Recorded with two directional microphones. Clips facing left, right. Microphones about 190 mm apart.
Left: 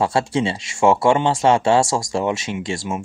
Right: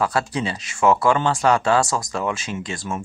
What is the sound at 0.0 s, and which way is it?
Speech, 25° left (ahead or behind).